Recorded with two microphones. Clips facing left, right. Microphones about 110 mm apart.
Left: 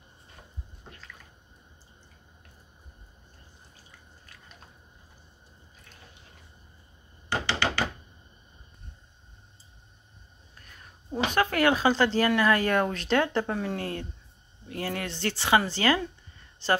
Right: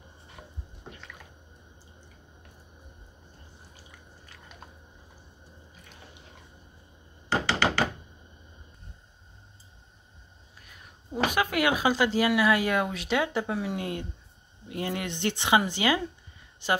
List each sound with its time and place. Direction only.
7.4 s thunk: 20° right (ahead or behind)
11.2 s speech: 10° right (ahead or behind)